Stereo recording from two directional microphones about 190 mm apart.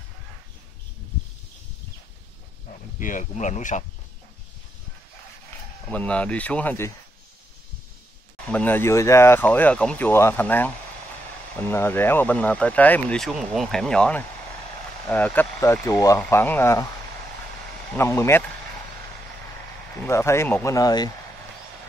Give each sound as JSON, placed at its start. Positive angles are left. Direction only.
{"t": 3.0, "sound": "speech", "side_deg": 45}
{"t": 5.9, "sound": "speech", "side_deg": 5}
{"t": 8.5, "sound": "speech", "side_deg": 10}
{"t": 11.7, "sound": "speech", "side_deg": 10}
{"t": 17.9, "sound": "speech", "side_deg": 15}
{"t": 20.0, "sound": "speech", "side_deg": 15}